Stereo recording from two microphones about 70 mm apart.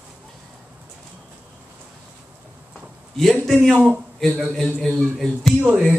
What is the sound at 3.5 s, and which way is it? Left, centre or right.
Speech, centre.